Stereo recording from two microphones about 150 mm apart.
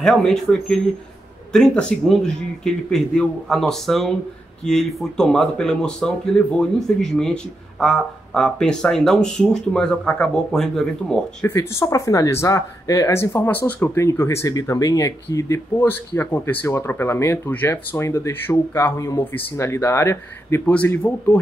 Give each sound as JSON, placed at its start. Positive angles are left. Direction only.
{"t": 0.0, "sound": "speech", "side_deg": 5}
{"t": 11.4, "sound": "speech", "side_deg": 20}